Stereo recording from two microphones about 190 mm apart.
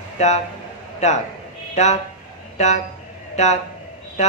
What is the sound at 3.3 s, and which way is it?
Speech, 35° left (ahead or behind).